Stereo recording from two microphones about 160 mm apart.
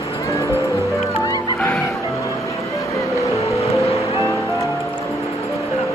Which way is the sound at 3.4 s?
20° left (ahead or behind).